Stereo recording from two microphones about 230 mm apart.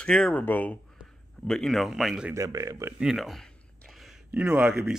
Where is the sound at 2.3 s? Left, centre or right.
Centre.